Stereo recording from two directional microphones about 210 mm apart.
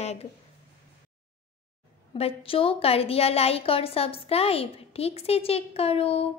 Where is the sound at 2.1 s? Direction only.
25° left (ahead or behind).